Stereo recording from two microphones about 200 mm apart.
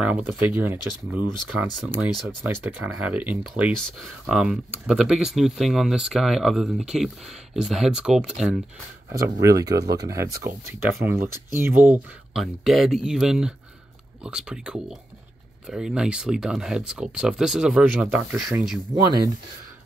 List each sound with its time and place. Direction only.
0.0 s speech: 5° right (ahead or behind)
9.1 s speech: 15° right (ahead or behind)